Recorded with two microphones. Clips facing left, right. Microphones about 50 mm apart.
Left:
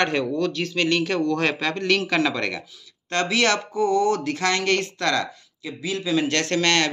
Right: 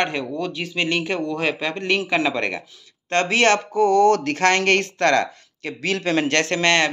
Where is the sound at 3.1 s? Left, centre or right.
Right.